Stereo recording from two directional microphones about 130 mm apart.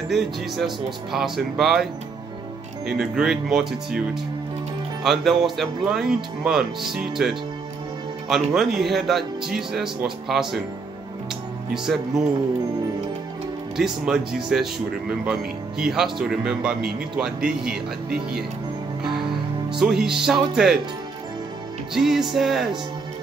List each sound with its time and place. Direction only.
0.1 s speech: centre (ahead or behind)
2.9 s speech: 5° right (ahead or behind)
11.7 s speech: 5° right (ahead or behind)
13.7 s speech: 5° right (ahead or behind)
19.8 s speech: 5° right (ahead or behind)
21.9 s speech: 5° right (ahead or behind)